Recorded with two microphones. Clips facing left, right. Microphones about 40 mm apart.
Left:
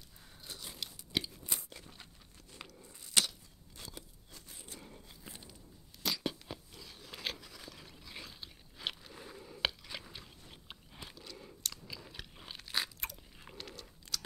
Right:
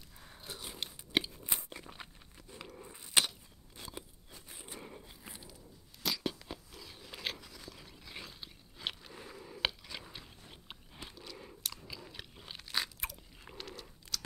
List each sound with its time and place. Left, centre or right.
0.2 s biting: right
1.1 s crunch: right
6.0 s biting: centre
11.3 s chewing: centre
12.4 s biting: centre